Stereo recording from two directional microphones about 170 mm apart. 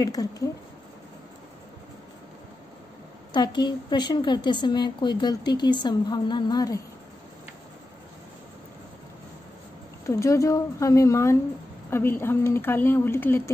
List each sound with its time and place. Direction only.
0.0 s a woman's voice: 20° left (ahead or behind)
3.3 s a woman's voice: 25° left (ahead or behind)
10.0 s speech: 15° left (ahead or behind)